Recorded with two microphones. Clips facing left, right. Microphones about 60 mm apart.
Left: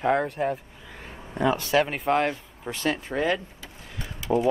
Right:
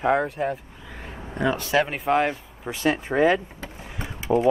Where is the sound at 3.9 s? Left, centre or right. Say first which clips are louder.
Right 2 dB; centre.